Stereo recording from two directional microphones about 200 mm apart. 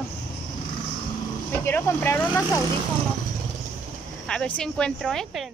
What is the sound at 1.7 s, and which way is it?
Speech, 10° left (ahead or behind).